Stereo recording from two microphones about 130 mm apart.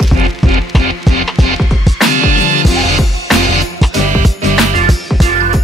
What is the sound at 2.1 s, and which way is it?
Music, 75° right (ahead or behind).